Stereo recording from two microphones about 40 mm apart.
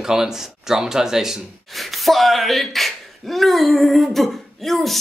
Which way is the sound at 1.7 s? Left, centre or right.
Centre.